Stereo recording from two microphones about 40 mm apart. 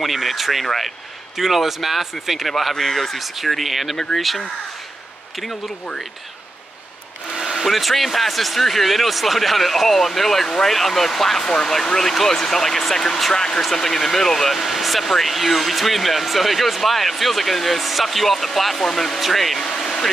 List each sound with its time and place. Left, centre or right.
0.0 s speech: centre
7.3 s speech: centre
11.4 s speech: centre
19.6 s a sound: centre